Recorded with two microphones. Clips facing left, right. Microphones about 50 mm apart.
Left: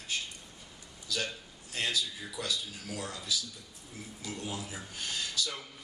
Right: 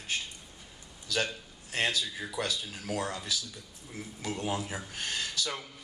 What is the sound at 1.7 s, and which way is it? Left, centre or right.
Speech, right.